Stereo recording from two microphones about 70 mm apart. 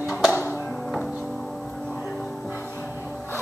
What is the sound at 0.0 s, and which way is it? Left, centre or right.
Music, centre.